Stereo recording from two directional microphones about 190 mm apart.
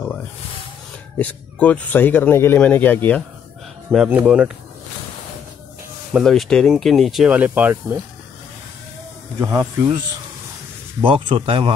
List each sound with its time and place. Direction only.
1.1 s speech: 10° left (ahead or behind)
3.9 s speech: 5° right (ahead or behind)
6.1 s speech: centre (ahead or behind)
9.4 s speech: 15° right (ahead or behind)
11.0 s speech: 25° right (ahead or behind)